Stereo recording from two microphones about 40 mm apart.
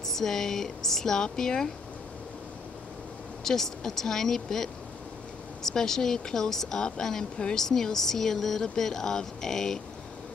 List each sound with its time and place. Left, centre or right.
0.0 s speech: centre
3.4 s speech: centre